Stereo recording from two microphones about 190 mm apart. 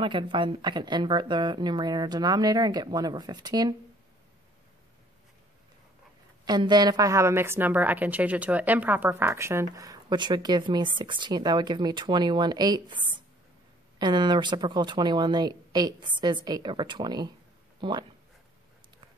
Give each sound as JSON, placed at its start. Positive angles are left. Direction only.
{"t": 0.0, "sound": "a woman's voice", "side_deg": -25}
{"t": 6.4, "sound": "a woman's voice", "side_deg": -20}